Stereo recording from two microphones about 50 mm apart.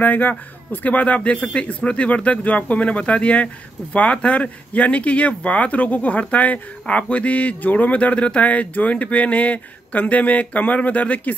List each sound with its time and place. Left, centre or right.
0.0 s speech: left